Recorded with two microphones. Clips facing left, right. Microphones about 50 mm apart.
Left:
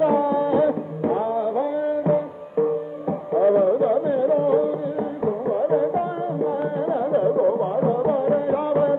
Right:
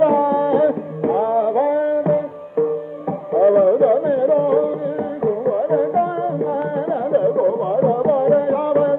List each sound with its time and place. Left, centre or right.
0.0 s music: centre
1.2 s music: right
1.9 s music: centre